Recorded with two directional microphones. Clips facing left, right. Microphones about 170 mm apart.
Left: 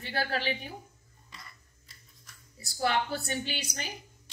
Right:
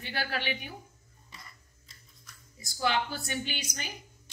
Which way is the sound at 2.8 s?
35° left (ahead or behind).